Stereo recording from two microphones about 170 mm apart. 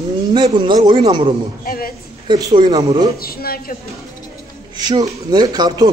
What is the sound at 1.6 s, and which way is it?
Speech, 60° left (ahead or behind).